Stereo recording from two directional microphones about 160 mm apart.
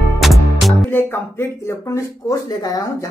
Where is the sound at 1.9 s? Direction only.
20° left (ahead or behind).